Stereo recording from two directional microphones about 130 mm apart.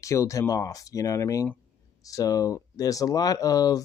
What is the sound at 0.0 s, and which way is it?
Speech, 25° left (ahead or behind).